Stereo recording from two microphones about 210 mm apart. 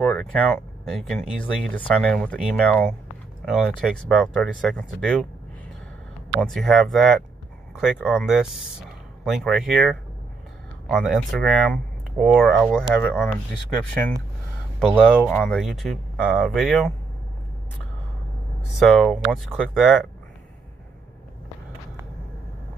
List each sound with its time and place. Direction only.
0.0 s speech: 5° left (ahead or behind)
6.4 s speech: centre (ahead or behind)
14.8 s speech: 5° left (ahead or behind)
18.8 s speech: centre (ahead or behind)